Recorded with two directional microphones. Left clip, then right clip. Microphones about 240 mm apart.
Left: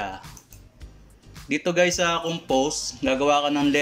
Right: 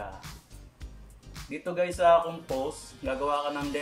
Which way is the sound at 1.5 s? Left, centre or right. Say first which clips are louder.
Left 9 dB; left.